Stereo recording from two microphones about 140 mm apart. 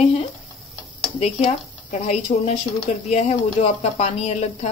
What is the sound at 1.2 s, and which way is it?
Speech, 50° left (ahead or behind).